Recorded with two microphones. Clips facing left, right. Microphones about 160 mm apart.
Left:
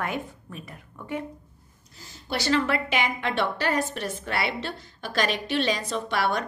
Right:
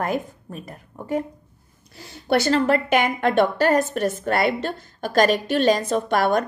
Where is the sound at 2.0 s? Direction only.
65° right (ahead or behind).